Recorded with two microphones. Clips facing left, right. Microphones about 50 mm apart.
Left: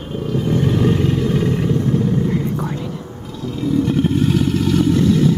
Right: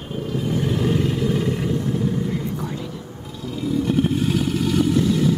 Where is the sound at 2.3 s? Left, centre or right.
Left.